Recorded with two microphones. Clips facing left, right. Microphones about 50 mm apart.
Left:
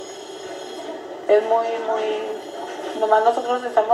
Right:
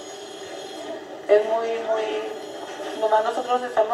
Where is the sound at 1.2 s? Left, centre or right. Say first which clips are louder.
Left 2 dB; left.